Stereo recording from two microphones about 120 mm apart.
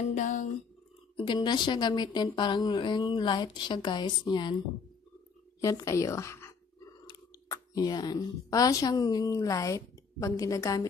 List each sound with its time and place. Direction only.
0.1 s speech: 90° left
1.1 s speech: 40° left (ahead or behind)
5.6 s a woman's voice: 25° left (ahead or behind)